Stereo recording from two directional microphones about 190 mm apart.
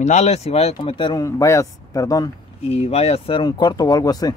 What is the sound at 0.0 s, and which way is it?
Speech, 35° left (ahead or behind).